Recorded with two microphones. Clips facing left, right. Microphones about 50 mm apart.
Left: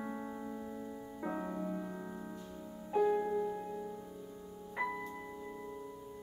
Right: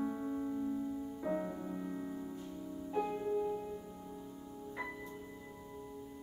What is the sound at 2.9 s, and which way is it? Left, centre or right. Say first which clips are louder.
Music: left 5 dB; left.